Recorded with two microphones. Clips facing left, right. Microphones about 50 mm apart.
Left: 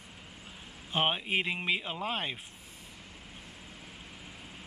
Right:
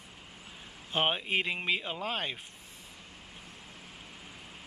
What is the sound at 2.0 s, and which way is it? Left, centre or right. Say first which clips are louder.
Speech: even; centre.